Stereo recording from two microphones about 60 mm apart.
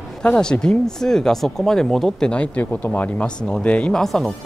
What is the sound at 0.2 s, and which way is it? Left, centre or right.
Speech, centre.